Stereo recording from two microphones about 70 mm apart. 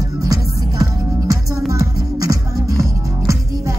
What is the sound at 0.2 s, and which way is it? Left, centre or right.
Music, right.